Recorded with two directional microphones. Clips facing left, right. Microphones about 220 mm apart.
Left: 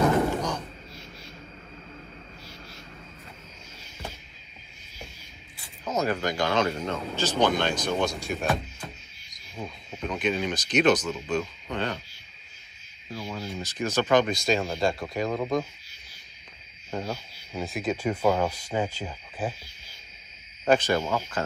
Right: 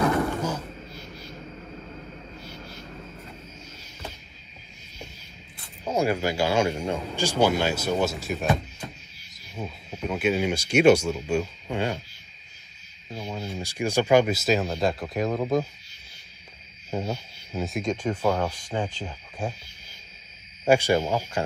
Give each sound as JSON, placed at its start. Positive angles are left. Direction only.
{"t": 5.9, "sound": "speech", "side_deg": -10}
{"t": 13.1, "sound": "a sound", "side_deg": -25}
{"t": 13.7, "sound": "speech", "side_deg": -10}
{"t": 16.9, "sound": "speech", "side_deg": -5}
{"t": 20.6, "sound": "speech", "side_deg": -10}